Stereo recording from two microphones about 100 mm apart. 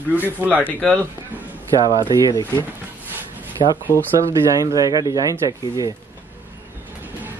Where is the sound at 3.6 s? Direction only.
90° left.